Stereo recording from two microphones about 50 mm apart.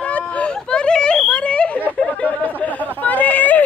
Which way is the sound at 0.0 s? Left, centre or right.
Left.